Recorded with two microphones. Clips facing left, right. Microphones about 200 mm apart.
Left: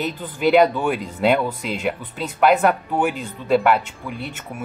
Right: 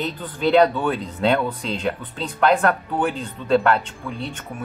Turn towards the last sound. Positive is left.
turn(degrees=5)  # may be behind; listen again after turning